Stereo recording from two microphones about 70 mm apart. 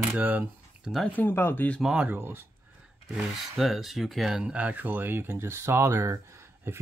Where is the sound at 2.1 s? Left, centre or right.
Right.